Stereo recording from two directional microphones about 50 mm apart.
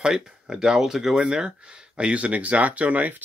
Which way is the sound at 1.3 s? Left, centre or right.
Centre.